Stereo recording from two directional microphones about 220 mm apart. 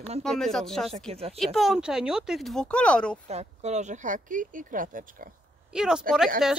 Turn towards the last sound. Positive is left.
turn(degrees=0)  # may be behind; listen again after turning